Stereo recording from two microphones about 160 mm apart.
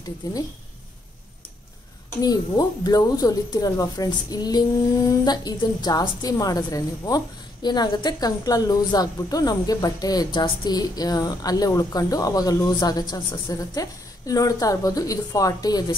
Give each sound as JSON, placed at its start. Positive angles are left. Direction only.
{"t": 0.2, "sound": "a woman's voice", "side_deg": 20}
{"t": 2.2, "sound": "a woman's voice", "side_deg": 25}